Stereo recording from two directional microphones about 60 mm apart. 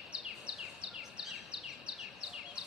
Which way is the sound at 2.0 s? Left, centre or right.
Centre.